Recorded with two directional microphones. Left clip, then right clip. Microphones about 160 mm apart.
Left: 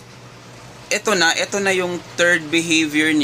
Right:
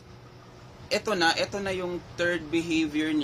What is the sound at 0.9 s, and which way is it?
Speech, 20° left (ahead or behind).